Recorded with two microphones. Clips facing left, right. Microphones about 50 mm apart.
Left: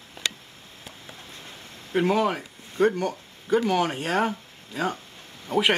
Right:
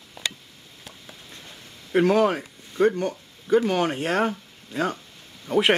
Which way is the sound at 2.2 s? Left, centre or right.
Centre.